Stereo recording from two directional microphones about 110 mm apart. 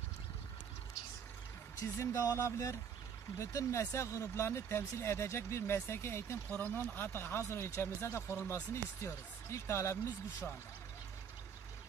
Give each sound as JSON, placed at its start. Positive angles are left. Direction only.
{"t": 1.8, "sound": "speech", "side_deg": 30}